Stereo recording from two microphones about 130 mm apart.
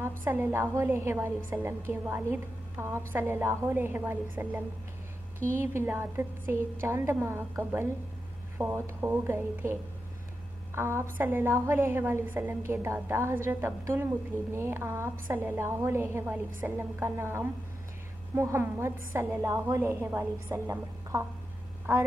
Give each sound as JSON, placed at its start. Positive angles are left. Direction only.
{"t": 0.2, "sound": "a woman's voice", "side_deg": -15}